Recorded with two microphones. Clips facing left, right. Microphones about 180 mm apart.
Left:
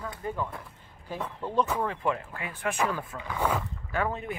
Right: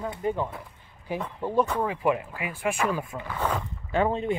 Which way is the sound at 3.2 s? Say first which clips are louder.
Left 1 dB; 10° left (ahead or behind).